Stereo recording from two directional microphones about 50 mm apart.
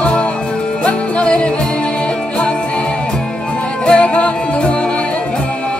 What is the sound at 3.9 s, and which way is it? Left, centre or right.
Music, left.